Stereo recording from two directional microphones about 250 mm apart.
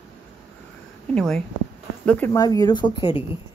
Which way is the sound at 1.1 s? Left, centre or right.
Centre.